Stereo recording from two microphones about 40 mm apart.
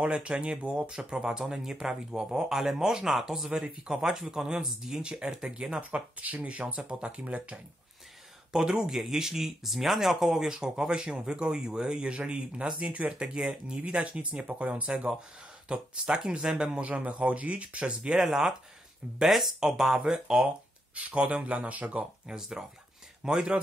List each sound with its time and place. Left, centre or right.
0.0 s speech: right; by 3.4 s centre
3.6 s speech: centre
5.8 s speech: right
8.5 s speech: centre; by 13.3 s right
13.3 s speech: centre
16.6 s speech: right
18.2 s speech: centre
20.0 s speech: centre
20.4 s speech: right
22.3 s speech: centre